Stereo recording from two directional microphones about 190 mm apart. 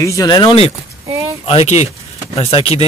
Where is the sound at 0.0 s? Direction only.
20° left (ahead or behind).